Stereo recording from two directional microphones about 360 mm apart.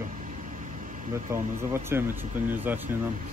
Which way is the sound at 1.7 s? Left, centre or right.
Centre.